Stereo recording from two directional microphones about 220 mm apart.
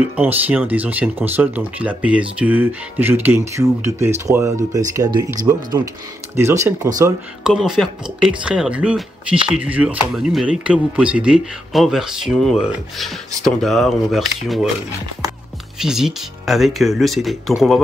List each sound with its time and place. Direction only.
0.1 s speech: 5° right (ahead or behind)
6.3 s speech: 10° right (ahead or behind)
15.8 s speech: centre (ahead or behind)